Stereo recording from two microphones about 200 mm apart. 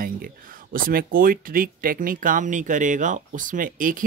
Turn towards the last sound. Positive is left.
turn(degrees=-40)  # may be behind; listen again after turning